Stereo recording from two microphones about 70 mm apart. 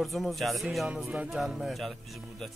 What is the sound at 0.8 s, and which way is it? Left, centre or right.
Speech, centre.